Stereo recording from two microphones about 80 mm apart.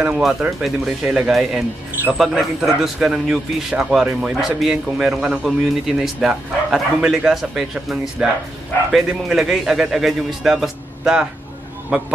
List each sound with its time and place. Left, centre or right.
0.1 s a man's voice: centre